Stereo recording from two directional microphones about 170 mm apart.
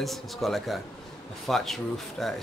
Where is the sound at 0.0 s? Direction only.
Centre (ahead or behind).